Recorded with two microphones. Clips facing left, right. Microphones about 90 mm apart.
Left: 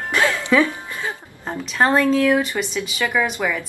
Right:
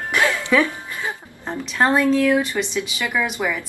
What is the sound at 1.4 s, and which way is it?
A woman's voice, 5° left (ahead or behind).